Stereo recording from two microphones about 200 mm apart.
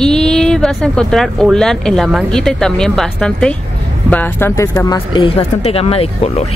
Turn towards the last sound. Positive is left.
turn(degrees=30)  # may be behind; listen again after turning